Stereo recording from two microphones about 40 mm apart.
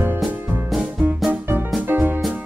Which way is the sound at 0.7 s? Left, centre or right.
Centre.